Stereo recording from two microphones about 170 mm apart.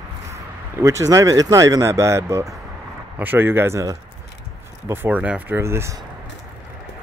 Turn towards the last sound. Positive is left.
turn(degrees=-15)  # may be behind; listen again after turning